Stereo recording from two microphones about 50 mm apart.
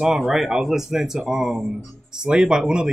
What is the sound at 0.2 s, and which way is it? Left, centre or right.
Speech, centre.